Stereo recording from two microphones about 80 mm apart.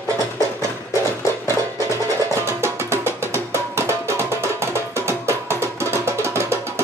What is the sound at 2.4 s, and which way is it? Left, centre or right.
Music, right.